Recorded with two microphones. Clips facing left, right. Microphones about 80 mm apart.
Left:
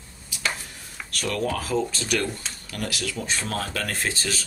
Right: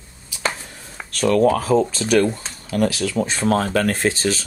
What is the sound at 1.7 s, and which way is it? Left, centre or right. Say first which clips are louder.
Speech: right 9 dB; right.